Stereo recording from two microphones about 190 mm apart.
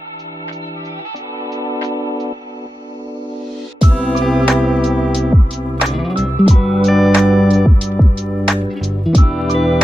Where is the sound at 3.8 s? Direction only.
Centre (ahead or behind).